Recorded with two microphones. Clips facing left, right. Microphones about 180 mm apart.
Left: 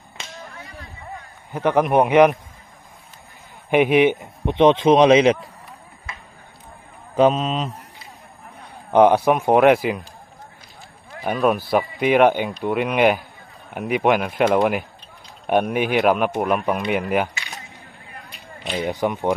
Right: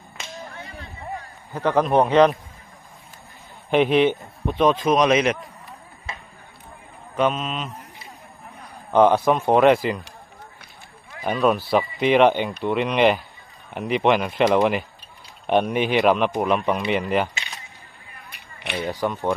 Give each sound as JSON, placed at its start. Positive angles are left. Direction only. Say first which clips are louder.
{"t": 1.5, "sound": "speech", "louder": "left 1 dB", "side_deg": 15}
{"t": 3.7, "sound": "a man's voice", "louder": "left 2 dB", "side_deg": 10}
{"t": 7.2, "sound": "speech", "louder": "left 5 dB", "side_deg": 35}
{"t": 8.9, "sound": "speech", "louder": "left 2 dB", "side_deg": 15}
{"t": 11.2, "sound": "speech", "louder": "left 1 dB", "side_deg": 5}
{"t": 18.9, "sound": "speech", "louder": "left 2 dB", "side_deg": 15}